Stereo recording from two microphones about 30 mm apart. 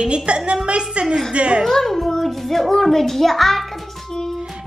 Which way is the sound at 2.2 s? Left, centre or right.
Centre.